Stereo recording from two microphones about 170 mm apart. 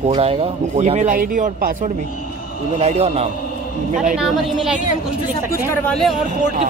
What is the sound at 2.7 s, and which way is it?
Speech, 40° right (ahead or behind).